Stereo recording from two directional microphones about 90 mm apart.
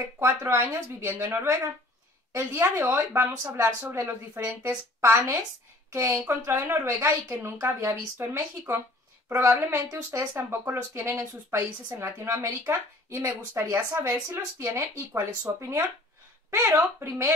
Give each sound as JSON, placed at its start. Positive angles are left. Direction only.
{"t": 0.2, "sound": "a woman's voice", "side_deg": -30}